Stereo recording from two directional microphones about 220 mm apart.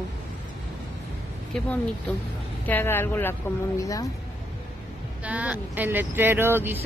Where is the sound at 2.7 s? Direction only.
10° left (ahead or behind).